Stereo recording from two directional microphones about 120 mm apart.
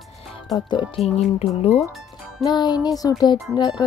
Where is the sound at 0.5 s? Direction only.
35° left (ahead or behind).